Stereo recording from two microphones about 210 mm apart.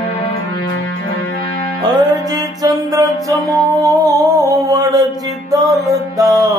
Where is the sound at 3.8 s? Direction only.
15° right (ahead or behind).